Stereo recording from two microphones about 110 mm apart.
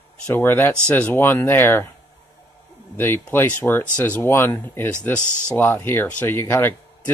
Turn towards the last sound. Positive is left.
turn(degrees=20)  # may be behind; listen again after turning